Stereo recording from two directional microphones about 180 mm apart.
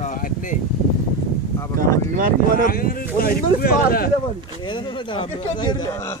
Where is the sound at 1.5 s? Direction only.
15° left (ahead or behind).